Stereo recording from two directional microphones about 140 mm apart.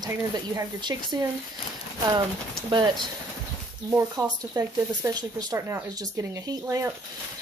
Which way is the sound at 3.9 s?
20° right (ahead or behind).